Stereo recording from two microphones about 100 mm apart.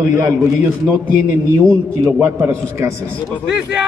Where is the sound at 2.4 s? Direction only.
25° right (ahead or behind).